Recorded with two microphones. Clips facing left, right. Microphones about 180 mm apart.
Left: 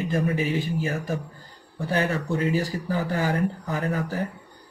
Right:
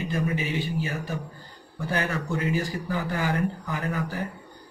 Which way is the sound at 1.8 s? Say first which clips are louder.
Left 3 dB; 30° left (ahead or behind).